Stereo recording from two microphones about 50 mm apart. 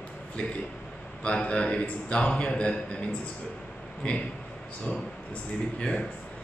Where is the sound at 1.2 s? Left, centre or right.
Left.